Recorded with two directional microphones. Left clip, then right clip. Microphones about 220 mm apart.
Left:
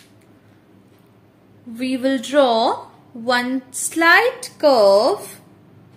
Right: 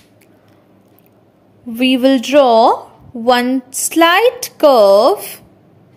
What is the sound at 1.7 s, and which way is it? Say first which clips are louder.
A woman's voice: right 9 dB; 35° right (ahead or behind).